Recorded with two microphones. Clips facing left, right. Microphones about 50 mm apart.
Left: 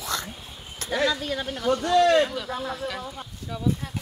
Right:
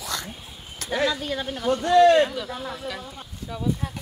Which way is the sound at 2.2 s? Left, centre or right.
Centre.